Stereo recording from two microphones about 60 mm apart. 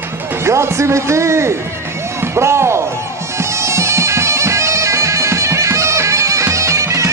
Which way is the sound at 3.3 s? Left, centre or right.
Right.